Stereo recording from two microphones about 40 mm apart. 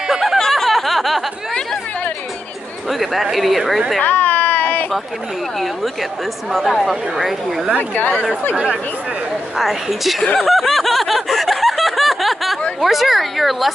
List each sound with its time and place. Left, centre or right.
0.1 s a sound: centre
0.4 s a sound: centre
2.9 s a woman's voice: centre
4.0 s a sound: left
6.5 s a woman's voice: centre
7.9 s speech: left
9.6 s a woman's voice: centre
10.4 s snicker: centre
12.8 s a woman's voice: centre